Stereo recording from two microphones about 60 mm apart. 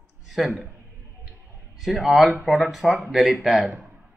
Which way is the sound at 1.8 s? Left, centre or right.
Centre.